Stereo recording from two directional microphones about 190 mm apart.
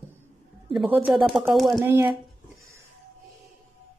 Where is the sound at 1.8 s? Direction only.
15° right (ahead or behind).